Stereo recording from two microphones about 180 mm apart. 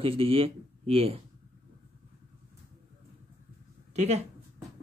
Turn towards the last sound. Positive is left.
turn(degrees=-35)  # may be behind; listen again after turning